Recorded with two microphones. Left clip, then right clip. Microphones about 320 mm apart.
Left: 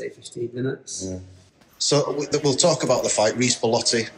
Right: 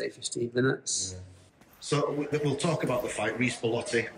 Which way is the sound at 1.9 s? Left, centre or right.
Centre.